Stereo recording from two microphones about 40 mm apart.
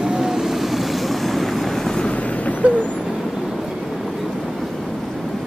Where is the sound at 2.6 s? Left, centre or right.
Right.